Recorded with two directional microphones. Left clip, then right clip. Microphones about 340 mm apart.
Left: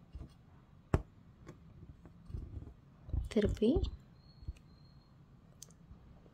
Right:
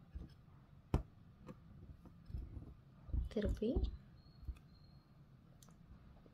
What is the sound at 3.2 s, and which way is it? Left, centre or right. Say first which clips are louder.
Speech: left 8 dB; left.